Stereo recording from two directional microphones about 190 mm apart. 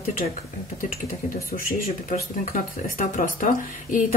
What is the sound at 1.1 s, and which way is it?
Speech, 50° left (ahead or behind).